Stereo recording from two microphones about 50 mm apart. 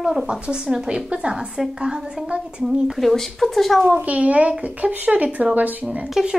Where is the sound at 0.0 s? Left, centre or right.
Centre.